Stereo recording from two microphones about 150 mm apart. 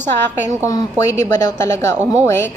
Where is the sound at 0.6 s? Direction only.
20° left (ahead or behind).